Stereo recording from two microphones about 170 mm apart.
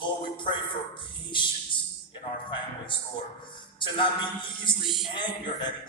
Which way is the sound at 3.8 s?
30° left (ahead or behind).